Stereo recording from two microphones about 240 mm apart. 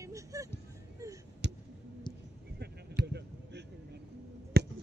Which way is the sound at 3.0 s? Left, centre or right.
Right.